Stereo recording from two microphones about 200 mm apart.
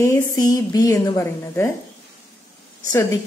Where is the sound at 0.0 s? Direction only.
15° left (ahead or behind).